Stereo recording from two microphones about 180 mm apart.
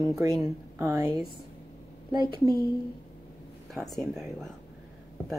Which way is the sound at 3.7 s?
Centre (ahead or behind).